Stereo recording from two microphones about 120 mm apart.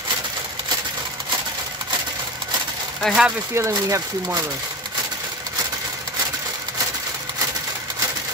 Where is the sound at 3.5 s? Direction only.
25° right (ahead or behind).